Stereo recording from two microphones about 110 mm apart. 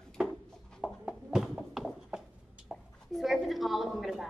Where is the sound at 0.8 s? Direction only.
5° right (ahead or behind).